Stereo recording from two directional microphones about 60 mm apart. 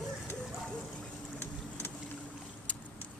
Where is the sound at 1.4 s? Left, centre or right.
Left.